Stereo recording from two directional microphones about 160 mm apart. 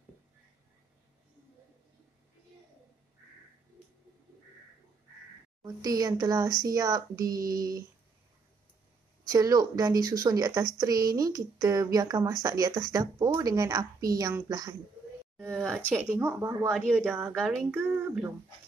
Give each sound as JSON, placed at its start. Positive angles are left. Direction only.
{"t": 5.6, "sound": "a woman's voice", "side_deg": -25}
{"t": 7.3, "sound": "a sound", "side_deg": -65}
{"t": 9.2, "sound": "a woman's voice", "side_deg": -20}